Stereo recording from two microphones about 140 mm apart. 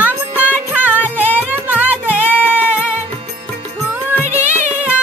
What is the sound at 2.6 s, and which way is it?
Music, 15° left (ahead or behind).